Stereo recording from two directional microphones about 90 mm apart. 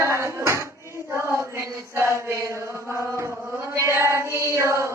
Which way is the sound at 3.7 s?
35° right (ahead or behind).